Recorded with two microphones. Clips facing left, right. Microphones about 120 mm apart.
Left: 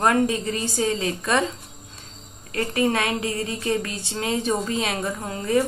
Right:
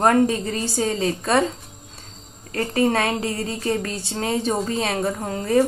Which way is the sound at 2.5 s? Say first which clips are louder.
Right 2 dB; 40° right (ahead or behind).